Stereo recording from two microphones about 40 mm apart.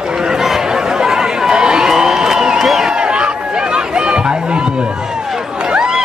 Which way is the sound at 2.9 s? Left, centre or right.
Right.